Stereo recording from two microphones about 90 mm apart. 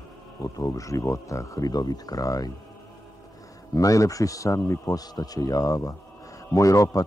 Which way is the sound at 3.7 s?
40° left (ahead or behind).